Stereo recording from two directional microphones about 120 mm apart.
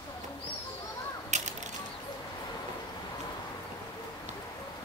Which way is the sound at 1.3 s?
75° right (ahead or behind).